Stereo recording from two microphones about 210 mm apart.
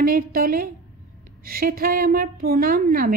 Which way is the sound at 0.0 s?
45° right (ahead or behind).